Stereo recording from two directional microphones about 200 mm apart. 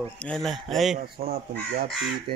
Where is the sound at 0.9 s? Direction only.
30° right (ahead or behind).